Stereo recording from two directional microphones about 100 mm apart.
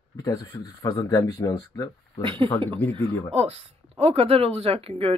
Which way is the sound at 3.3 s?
90° right.